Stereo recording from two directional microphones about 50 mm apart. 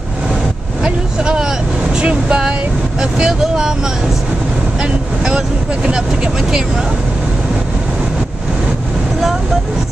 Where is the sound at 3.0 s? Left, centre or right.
Centre.